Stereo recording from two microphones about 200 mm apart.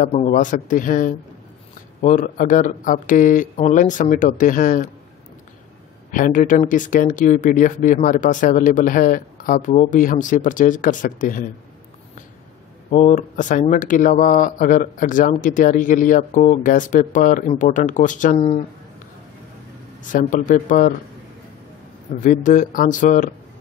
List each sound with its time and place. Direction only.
0.0 s speech: 35° left (ahead or behind)
6.1 s speech: 40° left (ahead or behind)
12.9 s speech: 35° left (ahead or behind)
20.0 s speech: 40° left (ahead or behind)
22.2 s speech: 40° left (ahead or behind)